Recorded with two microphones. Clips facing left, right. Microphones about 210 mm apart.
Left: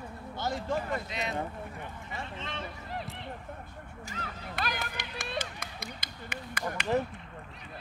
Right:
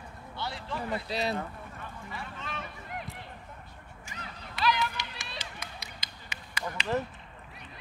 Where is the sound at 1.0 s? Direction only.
35° right (ahead or behind).